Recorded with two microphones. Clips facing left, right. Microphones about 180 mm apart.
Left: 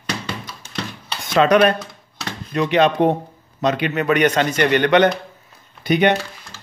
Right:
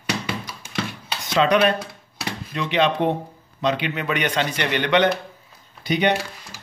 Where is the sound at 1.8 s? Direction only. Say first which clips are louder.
Right 1 dB; 10° right (ahead or behind).